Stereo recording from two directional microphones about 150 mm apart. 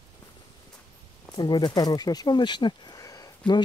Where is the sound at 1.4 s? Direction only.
30° left (ahead or behind).